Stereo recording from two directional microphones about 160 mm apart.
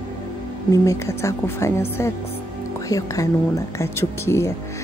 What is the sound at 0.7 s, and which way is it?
A woman's voice, 20° left (ahead or behind).